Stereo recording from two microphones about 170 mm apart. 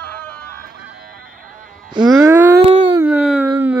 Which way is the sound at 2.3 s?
10° right (ahead or behind).